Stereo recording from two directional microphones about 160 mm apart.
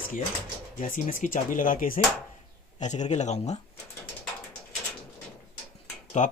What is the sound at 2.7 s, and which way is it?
Speech, 45° left (ahead or behind).